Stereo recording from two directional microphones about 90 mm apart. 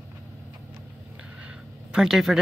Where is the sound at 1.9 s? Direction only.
5° right (ahead or behind).